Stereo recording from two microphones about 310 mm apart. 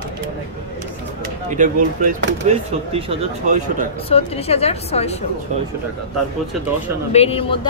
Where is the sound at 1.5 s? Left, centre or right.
Right.